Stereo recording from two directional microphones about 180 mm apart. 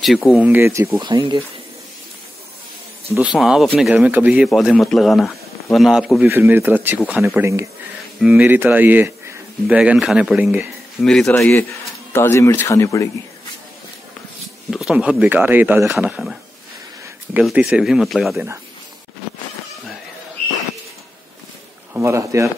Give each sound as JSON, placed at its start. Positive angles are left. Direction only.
{"t": 0.0, "sound": "speech", "side_deg": 0}
{"t": 3.2, "sound": "a man's voice", "side_deg": -5}
{"t": 7.4, "sound": "speech", "side_deg": -15}
{"t": 8.2, "sound": "speech", "side_deg": -5}
{"t": 11.0, "sound": "a man's voice", "side_deg": 5}
{"t": 12.1, "sound": "speech", "side_deg": 15}
{"t": 14.7, "sound": "a man's voice", "side_deg": -5}
{"t": 21.9, "sound": "speech", "side_deg": -15}